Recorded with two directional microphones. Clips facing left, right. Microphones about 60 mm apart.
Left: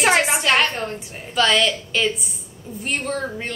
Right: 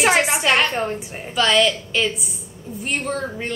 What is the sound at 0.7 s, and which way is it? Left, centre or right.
Speech, centre.